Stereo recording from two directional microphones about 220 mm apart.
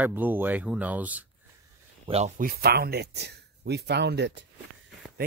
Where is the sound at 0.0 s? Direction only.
10° right (ahead or behind).